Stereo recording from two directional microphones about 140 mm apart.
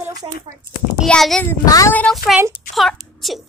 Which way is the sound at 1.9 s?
5° left (ahead or behind).